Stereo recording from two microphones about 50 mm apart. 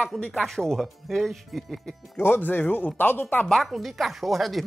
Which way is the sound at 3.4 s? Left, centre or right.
Centre.